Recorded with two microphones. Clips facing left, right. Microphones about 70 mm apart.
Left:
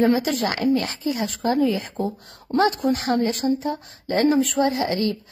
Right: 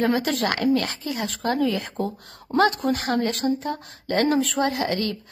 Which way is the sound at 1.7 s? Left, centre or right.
Centre.